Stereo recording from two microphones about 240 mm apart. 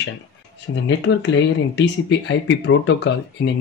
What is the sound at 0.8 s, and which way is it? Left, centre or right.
Speech, left.